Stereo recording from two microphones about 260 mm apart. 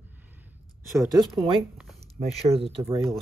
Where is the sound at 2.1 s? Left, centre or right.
Right.